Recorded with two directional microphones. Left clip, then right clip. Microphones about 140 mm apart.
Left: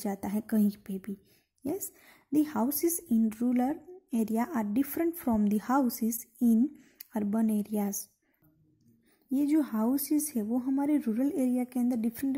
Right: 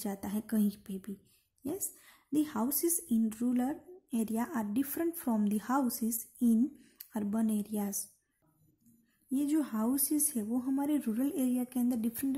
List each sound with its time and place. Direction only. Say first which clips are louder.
0.0 s a woman's voice: left 4 dB; 30° left (ahead or behind)
9.3 s a woman's voice: left 4 dB; 25° left (ahead or behind)